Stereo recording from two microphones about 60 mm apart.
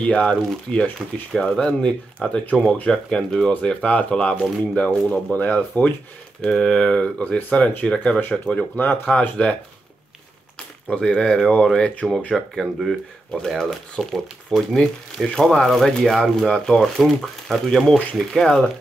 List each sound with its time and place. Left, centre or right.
0.0 s speech: centre
6.4 s speech: centre
10.9 s speech: centre
13.5 s speech: centre